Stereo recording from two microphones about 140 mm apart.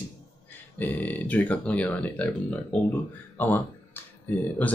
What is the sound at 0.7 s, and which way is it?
Speech, 10° left (ahead or behind).